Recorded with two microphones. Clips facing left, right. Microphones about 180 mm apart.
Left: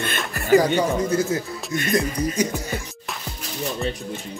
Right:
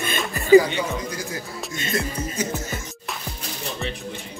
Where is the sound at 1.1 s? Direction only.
25° left (ahead or behind).